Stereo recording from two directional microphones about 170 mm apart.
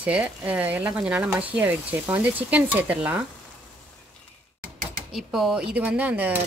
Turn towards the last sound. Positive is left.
turn(degrees=-10)  # may be behind; listen again after turning